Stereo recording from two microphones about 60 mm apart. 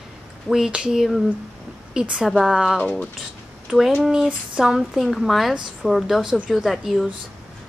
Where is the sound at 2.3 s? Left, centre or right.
Centre.